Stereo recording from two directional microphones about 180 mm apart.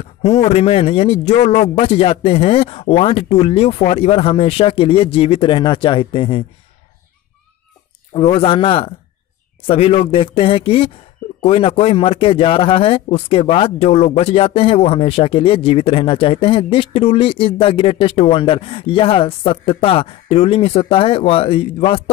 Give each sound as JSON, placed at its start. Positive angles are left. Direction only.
{"t": 0.2, "sound": "a man's voice", "side_deg": 35}
{"t": 8.1, "sound": "a man's voice", "side_deg": 30}